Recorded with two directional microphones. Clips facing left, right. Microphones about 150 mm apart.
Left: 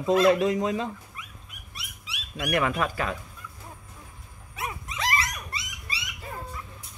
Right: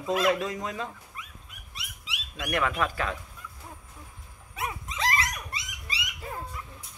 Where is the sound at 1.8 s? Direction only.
90° right.